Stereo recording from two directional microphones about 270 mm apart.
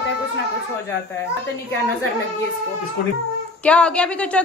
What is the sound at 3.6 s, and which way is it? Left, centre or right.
Speech, centre.